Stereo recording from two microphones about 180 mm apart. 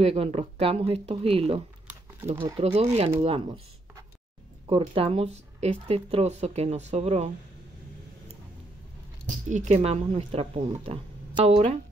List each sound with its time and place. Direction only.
0.0 s speech: 35° right (ahead or behind)
4.6 s speech: 30° right (ahead or behind)
9.2 s speech: 40° right (ahead or behind)